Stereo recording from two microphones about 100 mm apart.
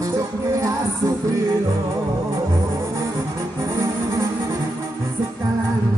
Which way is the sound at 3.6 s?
30° right (ahead or behind).